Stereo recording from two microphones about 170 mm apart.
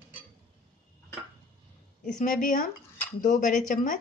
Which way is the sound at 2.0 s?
45° left (ahead or behind).